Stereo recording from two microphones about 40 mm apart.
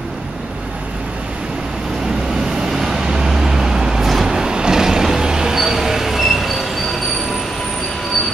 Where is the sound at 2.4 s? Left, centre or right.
Centre.